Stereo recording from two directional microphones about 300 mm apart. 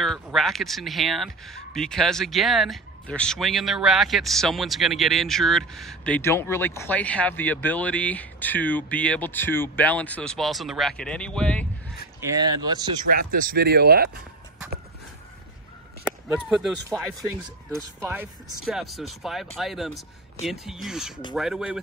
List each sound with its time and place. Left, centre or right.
0.0 s speech: centre
12.4 s speech: centre
13.1 s speech: right
16.0 s speech: centre
18.0 s speech: centre